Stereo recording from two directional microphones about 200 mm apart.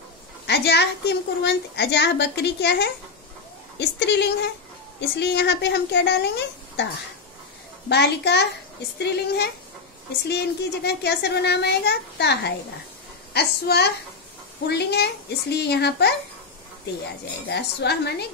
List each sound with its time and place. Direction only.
0.5 s a woman's voice: 55° left (ahead or behind)
7.9 s a woman's voice: 55° left (ahead or behind)
17.5 s a woman's voice: 55° left (ahead or behind)